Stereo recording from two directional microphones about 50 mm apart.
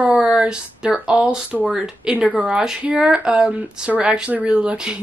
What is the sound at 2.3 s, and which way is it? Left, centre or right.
Speech, centre.